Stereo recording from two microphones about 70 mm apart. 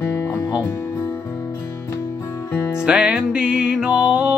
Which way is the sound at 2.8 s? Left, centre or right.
Centre.